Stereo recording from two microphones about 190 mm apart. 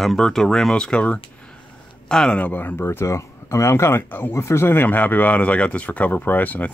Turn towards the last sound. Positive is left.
turn(degrees=10)  # may be behind; listen again after turning